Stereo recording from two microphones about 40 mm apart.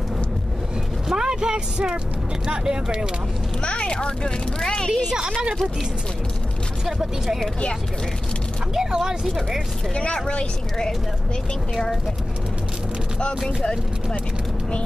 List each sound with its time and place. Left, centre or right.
1.0 s vehicle: centre
2.4 s speech: right
3.6 s speech: left
5.1 s speech: centre
6.9 s speech: centre
8.7 s speech: centre
9.9 s speech: left